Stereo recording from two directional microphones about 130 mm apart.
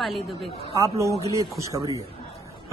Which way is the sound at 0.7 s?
25° right (ahead or behind).